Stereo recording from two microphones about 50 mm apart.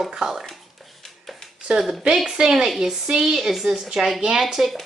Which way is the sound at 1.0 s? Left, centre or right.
Centre.